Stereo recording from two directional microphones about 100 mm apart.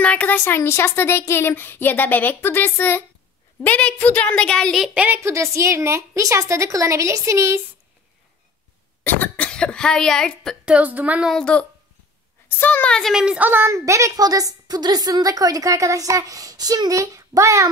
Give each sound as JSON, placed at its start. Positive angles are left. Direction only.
{"t": 0.0, "sound": "a woman's voice", "side_deg": 15}
{"t": 4.9, "sound": "a sound", "side_deg": -15}
{"t": 5.2, "sound": "a woman's voice", "side_deg": -30}
{"t": 9.0, "sound": "speech", "side_deg": 20}
{"t": 10.6, "sound": "a sound", "side_deg": -15}
{"t": 11.2, "sound": "a woman's voice", "side_deg": 10}
{"t": 12.4, "sound": "speech", "side_deg": 20}
{"t": 12.9, "sound": "a woman's voice", "side_deg": 0}
{"t": 13.2, "sound": "a sound", "side_deg": -10}
{"t": 13.5, "sound": "a woman's voice", "side_deg": -25}